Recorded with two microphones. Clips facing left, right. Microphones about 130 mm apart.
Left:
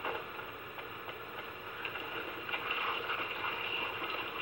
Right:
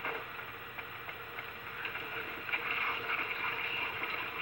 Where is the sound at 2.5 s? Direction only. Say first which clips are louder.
Left 1 dB; 15° left (ahead or behind).